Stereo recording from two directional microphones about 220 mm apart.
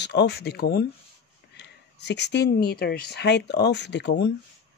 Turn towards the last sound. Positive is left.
turn(degrees=50)  # may be behind; listen again after turning